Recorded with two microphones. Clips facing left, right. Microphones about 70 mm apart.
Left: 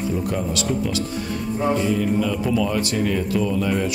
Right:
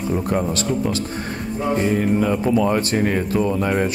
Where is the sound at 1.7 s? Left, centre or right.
Right.